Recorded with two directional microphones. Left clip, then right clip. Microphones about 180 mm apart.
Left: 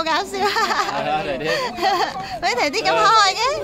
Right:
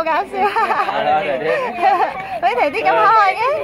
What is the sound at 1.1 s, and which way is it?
Speech, 40° left (ahead or behind).